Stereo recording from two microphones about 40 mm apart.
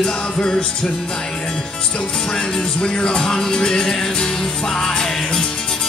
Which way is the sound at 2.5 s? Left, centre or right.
Centre.